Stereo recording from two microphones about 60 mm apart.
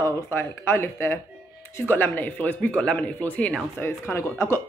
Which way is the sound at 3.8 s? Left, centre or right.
Left.